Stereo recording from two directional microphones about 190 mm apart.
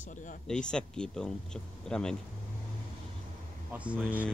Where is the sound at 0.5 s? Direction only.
5° left (ahead or behind).